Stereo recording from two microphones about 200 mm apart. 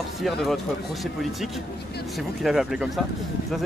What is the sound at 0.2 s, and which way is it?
Speech, centre (ahead or behind).